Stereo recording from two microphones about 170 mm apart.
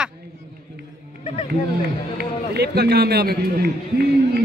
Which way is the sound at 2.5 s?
75° right (ahead or behind).